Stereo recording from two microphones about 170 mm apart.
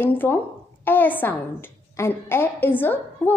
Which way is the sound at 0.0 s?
10° left (ahead or behind).